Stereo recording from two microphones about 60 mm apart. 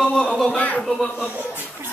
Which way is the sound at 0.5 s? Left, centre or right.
Left.